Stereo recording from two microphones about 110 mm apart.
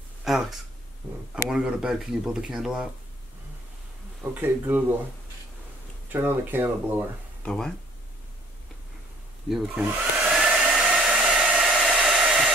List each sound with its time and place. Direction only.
0.2 s speech: centre (ahead or behind)
1.0 s speech: 15° right (ahead or behind)
4.2 s speech: 15° right (ahead or behind)
6.1 s speech: 20° right (ahead or behind)
7.4 s speech: 5° left (ahead or behind)
9.5 s speech: 5° right (ahead or behind)
10.4 s hair dryer: 5° right (ahead or behind)